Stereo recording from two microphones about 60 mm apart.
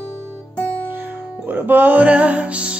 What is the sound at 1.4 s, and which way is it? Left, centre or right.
Music, right.